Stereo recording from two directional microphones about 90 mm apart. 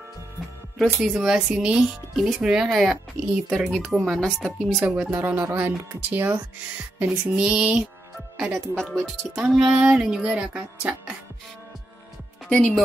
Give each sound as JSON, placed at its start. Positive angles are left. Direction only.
{"t": 0.7, "sound": "speech", "side_deg": -5}
{"t": 4.8, "sound": "music", "side_deg": -5}
{"t": 5.1, "sound": "speech", "side_deg": -20}
{"t": 7.3, "sound": "music", "side_deg": -10}
{"t": 8.7, "sound": "speech", "side_deg": 0}
{"t": 9.4, "sound": "music", "side_deg": -5}
{"t": 12.4, "sound": "speech", "side_deg": 10}